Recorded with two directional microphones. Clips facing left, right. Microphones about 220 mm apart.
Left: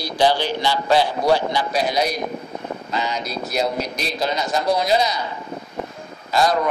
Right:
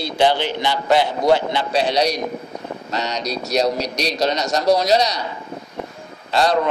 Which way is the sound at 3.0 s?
80° right.